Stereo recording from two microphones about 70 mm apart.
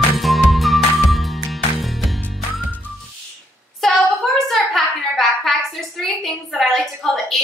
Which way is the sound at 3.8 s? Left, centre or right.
Centre.